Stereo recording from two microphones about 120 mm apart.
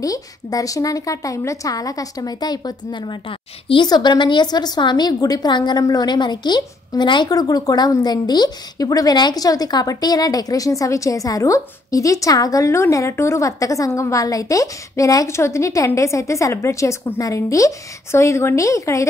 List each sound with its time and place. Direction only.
0.0 s a woman's voice: 30° left (ahead or behind)